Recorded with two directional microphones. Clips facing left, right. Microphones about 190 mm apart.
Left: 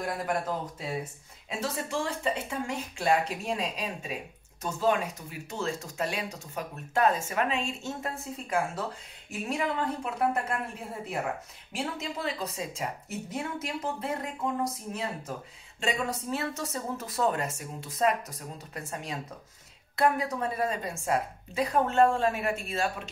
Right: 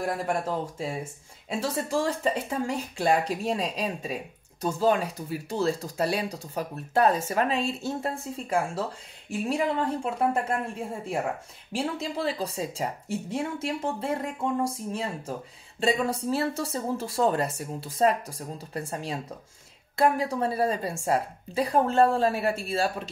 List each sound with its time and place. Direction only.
0.0 s speech: 30° right (ahead or behind)
11.7 s speech: 35° right (ahead or behind)